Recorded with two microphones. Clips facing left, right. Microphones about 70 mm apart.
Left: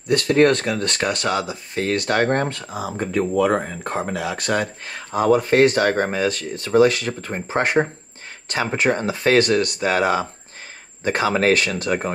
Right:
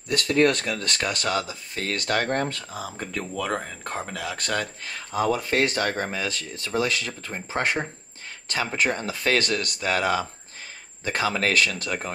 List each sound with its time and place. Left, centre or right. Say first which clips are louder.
0.1 s speech: left 5 dB; left
2.7 s speech: left 8 dB; centre
4.8 s speech: left 6 dB; left
11.2 s speech: left 5 dB; left